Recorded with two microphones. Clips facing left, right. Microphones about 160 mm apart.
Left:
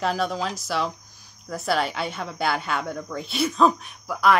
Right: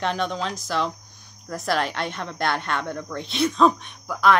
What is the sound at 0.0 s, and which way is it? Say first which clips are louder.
Speech: left 1 dB; 5° left (ahead or behind).